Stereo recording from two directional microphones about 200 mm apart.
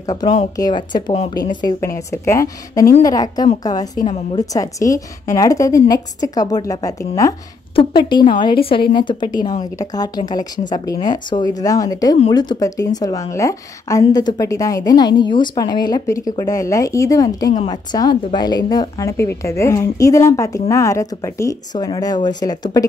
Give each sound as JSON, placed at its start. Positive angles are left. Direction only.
{"t": 0.0, "sound": "a woman's voice", "side_deg": 20}